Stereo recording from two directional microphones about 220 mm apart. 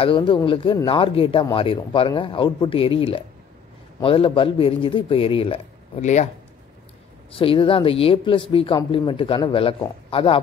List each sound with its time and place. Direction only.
0.0 s speech: 25° left (ahead or behind)
7.3 s speech: 25° left (ahead or behind)